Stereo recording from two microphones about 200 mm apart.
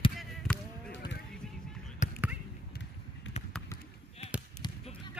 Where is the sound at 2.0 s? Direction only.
40° left (ahead or behind).